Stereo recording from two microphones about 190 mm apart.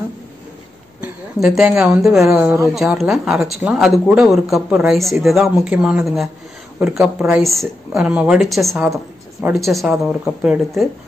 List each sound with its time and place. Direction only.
1.0 s a woman's voice: centre (ahead or behind)